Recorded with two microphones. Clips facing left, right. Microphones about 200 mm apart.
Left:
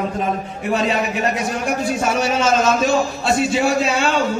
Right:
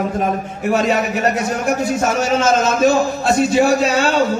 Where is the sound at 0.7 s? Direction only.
45° right (ahead or behind).